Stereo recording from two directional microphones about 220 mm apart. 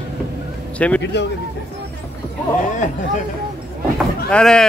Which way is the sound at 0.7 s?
5° left (ahead or behind).